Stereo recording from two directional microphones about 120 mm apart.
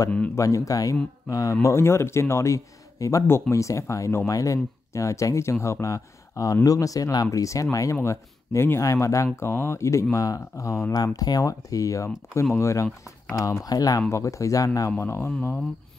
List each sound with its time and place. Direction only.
0.4 s speech: 25° left (ahead or behind)